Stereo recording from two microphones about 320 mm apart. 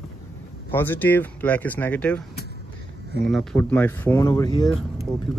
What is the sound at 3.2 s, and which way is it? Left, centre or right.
Speech, centre.